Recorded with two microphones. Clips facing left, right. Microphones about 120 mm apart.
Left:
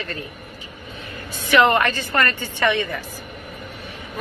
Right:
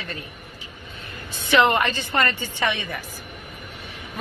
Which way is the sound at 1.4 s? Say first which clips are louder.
Left 2 dB; 20° right (ahead or behind).